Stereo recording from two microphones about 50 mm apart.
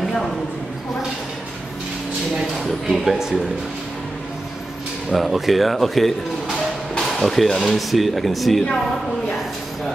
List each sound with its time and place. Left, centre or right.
2.6 s speech: centre
5.1 s speech: centre